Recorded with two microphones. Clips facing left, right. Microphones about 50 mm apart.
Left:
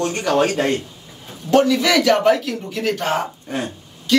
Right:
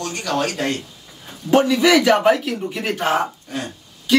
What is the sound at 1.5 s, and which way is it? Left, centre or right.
A man's voice, centre.